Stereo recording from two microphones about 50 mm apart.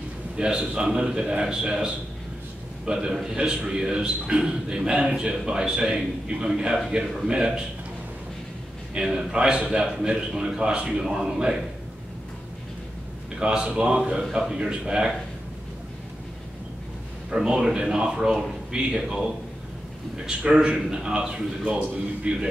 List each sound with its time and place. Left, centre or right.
0.4 s a man's voice: centre
8.9 s a man's voice: centre
13.4 s a man's voice: centre
17.3 s a man's voice: centre
20.2 s a man's voice: centre